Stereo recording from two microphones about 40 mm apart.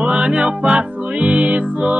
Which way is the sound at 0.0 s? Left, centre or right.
Right.